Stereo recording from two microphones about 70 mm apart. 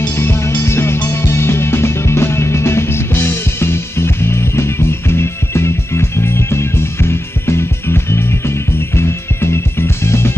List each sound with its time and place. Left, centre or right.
0.0 s music: left